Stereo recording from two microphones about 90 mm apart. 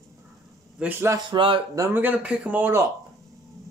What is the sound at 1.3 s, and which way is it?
Speech, 70° right (ahead or behind).